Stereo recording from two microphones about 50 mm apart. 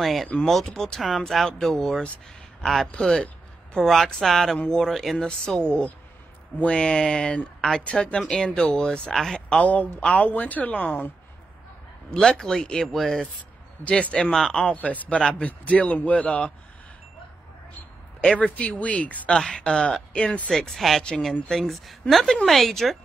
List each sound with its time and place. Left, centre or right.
0.0 s speech: centre
0.7 s speech: centre
5.1 s speech: centre
6.6 s speech: centre
9.6 s speech: left
12.1 s speech: centre
13.8 s speech: left
14.3 s speech: centre
14.9 s speech: left
15.1 s speech: centre
18.4 s speech: left
19.3 s speech: centre; by 20.4 s left
20.4 s speech: centre